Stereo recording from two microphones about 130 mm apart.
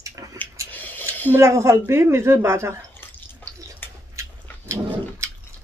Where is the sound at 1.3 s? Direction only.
20° right (ahead or behind).